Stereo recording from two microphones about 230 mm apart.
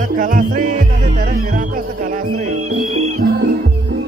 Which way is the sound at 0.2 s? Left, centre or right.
Right.